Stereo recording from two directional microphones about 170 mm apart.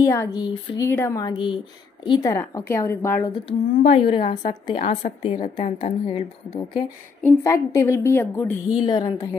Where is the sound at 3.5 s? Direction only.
35° left (ahead or behind).